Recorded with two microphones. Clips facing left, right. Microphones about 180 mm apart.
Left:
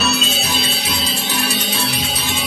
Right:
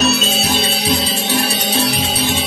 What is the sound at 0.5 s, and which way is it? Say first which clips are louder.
Music: right 6 dB; 35° right (ahead or behind).